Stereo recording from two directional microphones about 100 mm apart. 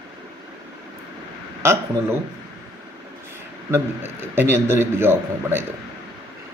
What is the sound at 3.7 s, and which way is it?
A man's voice, 20° right (ahead or behind).